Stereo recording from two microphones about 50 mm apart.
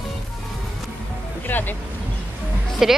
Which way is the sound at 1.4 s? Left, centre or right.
Left.